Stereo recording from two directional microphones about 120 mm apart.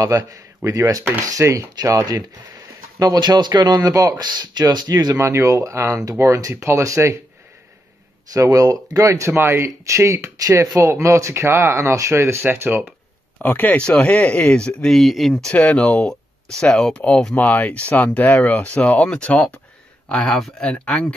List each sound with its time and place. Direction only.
0.0 s speech: 30° right (ahead or behind)
8.3 s speech: 30° right (ahead or behind)
13.4 s speech: 15° left (ahead or behind)
15.4 s speech: 10° left (ahead or behind)